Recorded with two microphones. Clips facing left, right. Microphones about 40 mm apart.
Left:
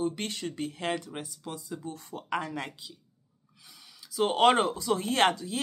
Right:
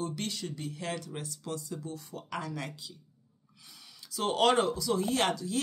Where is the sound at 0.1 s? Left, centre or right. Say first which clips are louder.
Left 2 dB; left.